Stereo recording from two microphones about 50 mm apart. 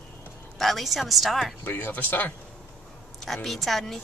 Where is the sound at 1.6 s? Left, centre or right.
Left.